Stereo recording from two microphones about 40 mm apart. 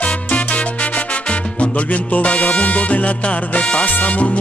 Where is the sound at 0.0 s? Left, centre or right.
Left.